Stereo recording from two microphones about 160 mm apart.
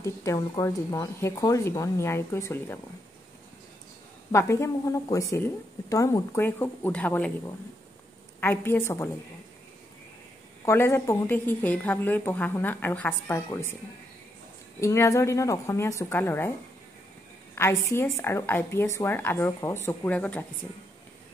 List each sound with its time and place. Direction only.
0.0 s a woman's voice: 20° left (ahead or behind)
4.3 s a woman's voice: 15° left (ahead or behind)
10.6 s a woman's voice: 15° left (ahead or behind)
14.8 s a woman's voice: 20° left (ahead or behind)
17.6 s a woman's voice: 15° left (ahead or behind)